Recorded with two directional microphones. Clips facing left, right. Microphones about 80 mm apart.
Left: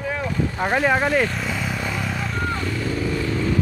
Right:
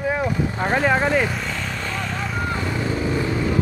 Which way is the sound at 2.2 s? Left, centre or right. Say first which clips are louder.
Even; centre.